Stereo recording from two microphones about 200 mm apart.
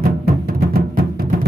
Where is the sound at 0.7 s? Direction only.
50° right (ahead or behind).